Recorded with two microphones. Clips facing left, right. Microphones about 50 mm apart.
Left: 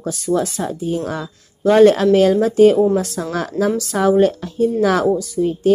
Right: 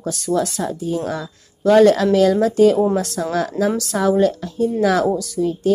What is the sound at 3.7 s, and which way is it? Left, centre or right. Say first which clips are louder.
Speech: left 2 dB; left.